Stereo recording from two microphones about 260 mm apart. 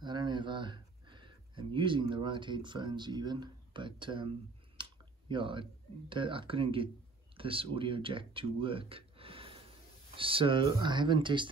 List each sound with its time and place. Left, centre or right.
0.0 s speech: centre
4.8 s clicking: centre
5.3 s speech: centre